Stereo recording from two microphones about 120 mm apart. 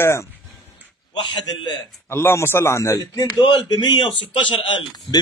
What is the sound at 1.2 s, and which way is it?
Speech, 40° left (ahead or behind).